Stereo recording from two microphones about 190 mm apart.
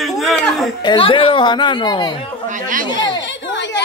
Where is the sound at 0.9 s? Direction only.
25° left (ahead or behind).